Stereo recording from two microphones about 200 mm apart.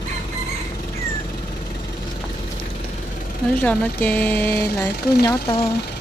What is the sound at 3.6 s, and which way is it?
Speech, 5° left (ahead or behind).